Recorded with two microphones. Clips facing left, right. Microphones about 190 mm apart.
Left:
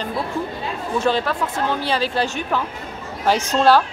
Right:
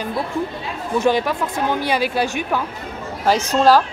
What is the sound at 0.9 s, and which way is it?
A woman's voice, 15° right (ahead or behind).